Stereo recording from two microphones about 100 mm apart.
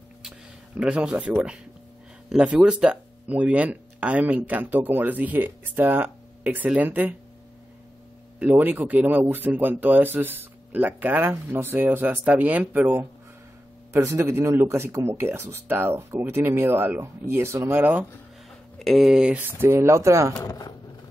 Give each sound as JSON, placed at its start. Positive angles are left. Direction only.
{"t": 0.7, "sound": "speech", "side_deg": -10}
{"t": 8.4, "sound": "speech", "side_deg": -20}
{"t": 13.9, "sound": "speech", "side_deg": -25}
{"t": 18.8, "sound": "speech", "side_deg": 0}
{"t": 20.3, "sound": "speech", "side_deg": 40}